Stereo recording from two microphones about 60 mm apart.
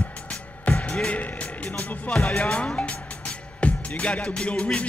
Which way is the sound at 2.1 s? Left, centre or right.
Centre.